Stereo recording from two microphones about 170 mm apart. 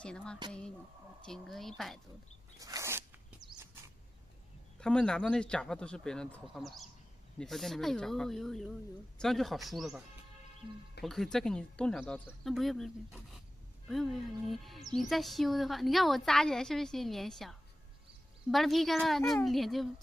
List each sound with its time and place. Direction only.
0.0 s a woman's voice: 5° left (ahead or behind)
2.6 s a sound: 20° right (ahead or behind)
4.7 s a woman's voice: 5° left (ahead or behind)